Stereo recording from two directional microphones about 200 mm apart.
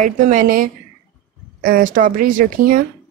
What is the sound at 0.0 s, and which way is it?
Speech, 40° right (ahead or behind).